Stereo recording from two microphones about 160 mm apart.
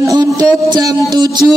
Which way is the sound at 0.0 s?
20° right (ahead or behind).